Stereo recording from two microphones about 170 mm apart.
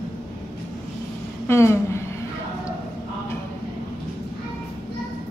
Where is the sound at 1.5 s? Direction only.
15° left (ahead or behind).